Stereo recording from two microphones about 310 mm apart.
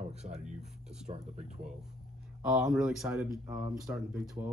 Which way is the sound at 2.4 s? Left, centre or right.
Centre.